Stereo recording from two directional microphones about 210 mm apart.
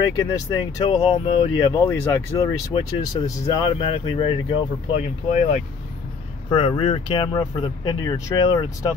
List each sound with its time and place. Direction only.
0.0 s speech: 15° left (ahead or behind)
1.9 s speech: 15° left (ahead or behind)